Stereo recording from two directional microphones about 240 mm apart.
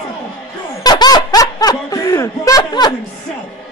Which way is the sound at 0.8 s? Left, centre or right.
Centre.